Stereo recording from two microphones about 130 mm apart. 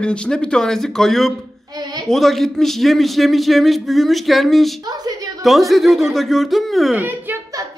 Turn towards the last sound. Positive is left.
turn(degrees=-15)  # may be behind; listen again after turning